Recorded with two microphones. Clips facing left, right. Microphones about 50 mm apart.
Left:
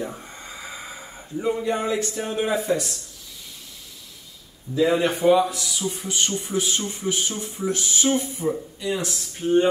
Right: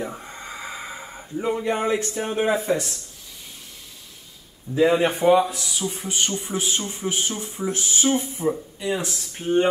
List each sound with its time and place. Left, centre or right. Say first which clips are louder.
0.0 s a sound: right 1 dB; centre
2.1 s speech: right 2 dB; right
4.7 s speech: right 2 dB; right